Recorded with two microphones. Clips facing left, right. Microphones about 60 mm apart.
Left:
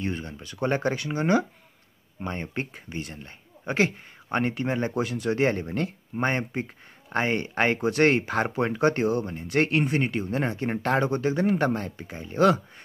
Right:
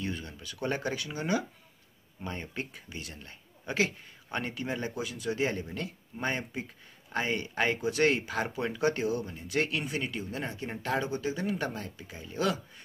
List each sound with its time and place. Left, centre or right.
0.0 s speech: left